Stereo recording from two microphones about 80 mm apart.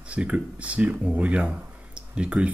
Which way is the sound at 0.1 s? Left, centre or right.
Centre.